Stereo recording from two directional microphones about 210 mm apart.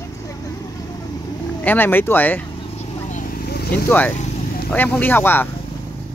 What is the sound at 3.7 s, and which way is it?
Speech, 10° left (ahead or behind).